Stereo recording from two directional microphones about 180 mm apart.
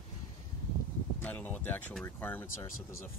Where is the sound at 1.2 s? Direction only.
10° left (ahead or behind).